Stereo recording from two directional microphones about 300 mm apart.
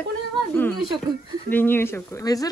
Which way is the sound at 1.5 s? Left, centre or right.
Centre.